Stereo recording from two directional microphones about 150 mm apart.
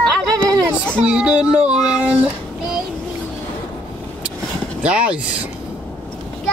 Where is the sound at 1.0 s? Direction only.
5° right (ahead or behind).